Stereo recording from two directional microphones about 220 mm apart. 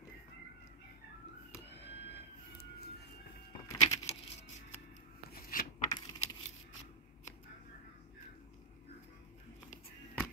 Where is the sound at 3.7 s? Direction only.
15° left (ahead or behind).